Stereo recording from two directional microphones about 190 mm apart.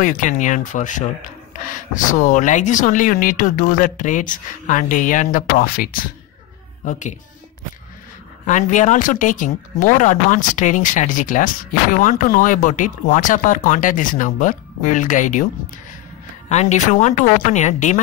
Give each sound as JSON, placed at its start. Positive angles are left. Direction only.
{"t": 0.0, "sound": "a woman's voice", "side_deg": 40}
{"t": 8.5, "sound": "speech", "side_deg": 40}
{"t": 16.4, "sound": "speech", "side_deg": 35}